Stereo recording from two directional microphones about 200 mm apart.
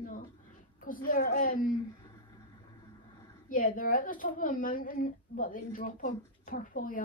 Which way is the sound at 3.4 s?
45° left (ahead or behind).